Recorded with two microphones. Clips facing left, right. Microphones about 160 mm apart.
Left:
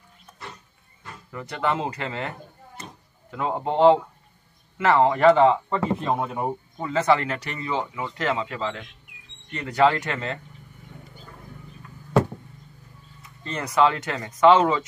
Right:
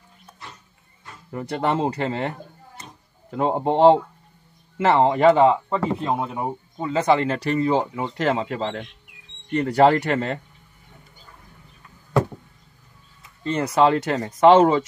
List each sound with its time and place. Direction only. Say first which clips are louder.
1.3 s speech: right 3 dB; 35° right (ahead or behind)
5.7 s speech: right 1 dB; 5° right (ahead or behind)
6.8 s speech: right 2 dB; 20° right (ahead or behind)
7.2 s speech: right 9 dB; 35° right (ahead or behind)
13.5 s speech: right 3 dB; 30° right (ahead or behind)